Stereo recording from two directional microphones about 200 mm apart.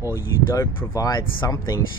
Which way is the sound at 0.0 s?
15° left (ahead or behind).